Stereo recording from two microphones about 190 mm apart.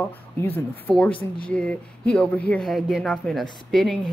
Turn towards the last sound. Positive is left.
turn(degrees=0)  # may be behind; listen again after turning